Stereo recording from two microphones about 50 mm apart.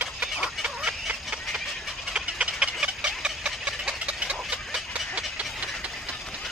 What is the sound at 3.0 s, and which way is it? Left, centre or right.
Vehicle, centre.